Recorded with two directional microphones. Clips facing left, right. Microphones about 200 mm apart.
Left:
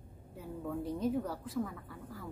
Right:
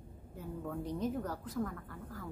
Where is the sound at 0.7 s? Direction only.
Centre (ahead or behind).